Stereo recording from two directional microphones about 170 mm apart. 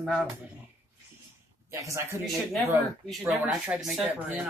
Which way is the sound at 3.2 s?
15° right (ahead or behind).